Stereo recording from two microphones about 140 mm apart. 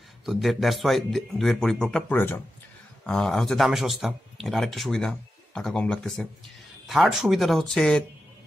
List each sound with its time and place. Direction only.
0.2 s speech: centre (ahead or behind)
2.1 s a man's voice: 15° left (ahead or behind)
3.0 s speech: 5° left (ahead or behind)